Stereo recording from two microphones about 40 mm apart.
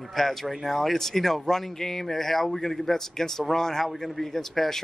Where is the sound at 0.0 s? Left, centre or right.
Centre.